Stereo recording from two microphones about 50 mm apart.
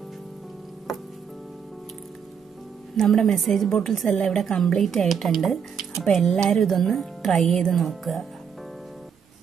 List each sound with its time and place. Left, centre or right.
3.0 s a woman's voice: centre
7.3 s a woman's voice: centre
7.6 s speech: centre